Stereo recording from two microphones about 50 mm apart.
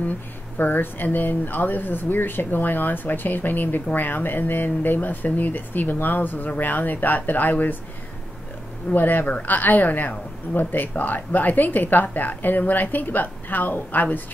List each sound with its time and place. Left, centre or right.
0.6 s a woman's voice: left
8.9 s a woman's voice: left